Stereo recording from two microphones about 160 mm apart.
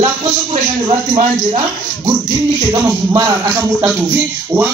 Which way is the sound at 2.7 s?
20° right (ahead or behind).